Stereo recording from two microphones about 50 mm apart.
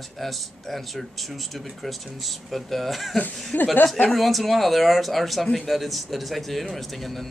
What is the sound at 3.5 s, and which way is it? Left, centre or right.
Speech, left.